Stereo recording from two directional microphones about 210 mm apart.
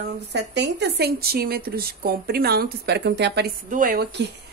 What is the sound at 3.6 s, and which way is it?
Speech, 40° right (ahead or behind).